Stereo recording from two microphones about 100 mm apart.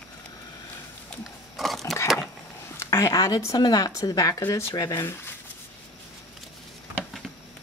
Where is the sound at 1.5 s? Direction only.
Centre (ahead or behind).